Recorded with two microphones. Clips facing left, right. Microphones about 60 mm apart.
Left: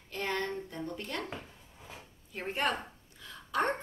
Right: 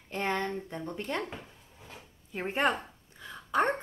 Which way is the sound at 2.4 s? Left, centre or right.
Centre.